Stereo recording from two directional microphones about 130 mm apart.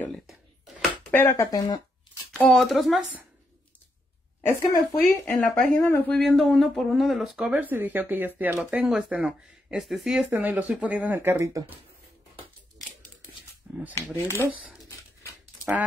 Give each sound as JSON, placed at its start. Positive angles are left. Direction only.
{"t": 0.1, "sound": "a sound", "side_deg": 0}
{"t": 1.1, "sound": "speech", "side_deg": 20}
{"t": 2.3, "sound": "speech", "side_deg": 5}
{"t": 4.5, "sound": "speech", "side_deg": 20}
{"t": 6.1, "sound": "speech", "side_deg": 5}
{"t": 10.3, "sound": "speech", "side_deg": -15}
{"t": 13.7, "sound": "shuffling cards", "side_deg": -10}
{"t": 14.1, "sound": "speech", "side_deg": 20}